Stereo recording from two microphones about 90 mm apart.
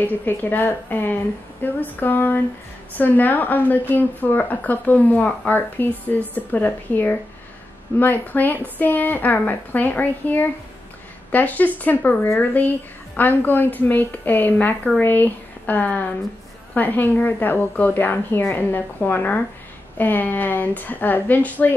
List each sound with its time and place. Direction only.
0.0 s a woman's voice: 20° left (ahead or behind)